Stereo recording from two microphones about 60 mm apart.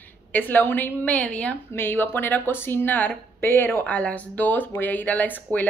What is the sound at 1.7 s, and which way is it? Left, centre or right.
A woman's voice, left.